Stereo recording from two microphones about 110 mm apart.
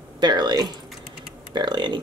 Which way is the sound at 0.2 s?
40° right (ahead or behind).